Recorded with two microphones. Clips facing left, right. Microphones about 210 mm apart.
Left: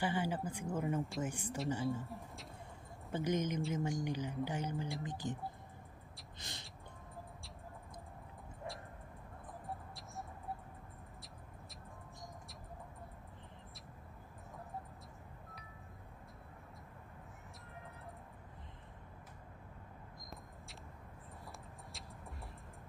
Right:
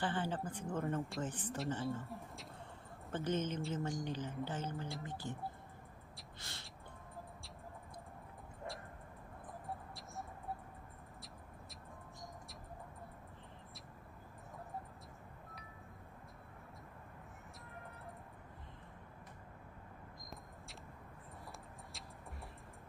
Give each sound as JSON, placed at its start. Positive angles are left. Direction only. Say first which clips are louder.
{"t": 0.0, "sound": "speech", "louder": "left 2 dB", "side_deg": 10}
{"t": 3.1, "sound": "speech", "louder": "left 2 dB", "side_deg": 15}
{"t": 6.4, "sound": "speech", "louder": "left 3 dB", "side_deg": 20}
{"t": 9.7, "sound": "mouse", "louder": "even", "side_deg": 0}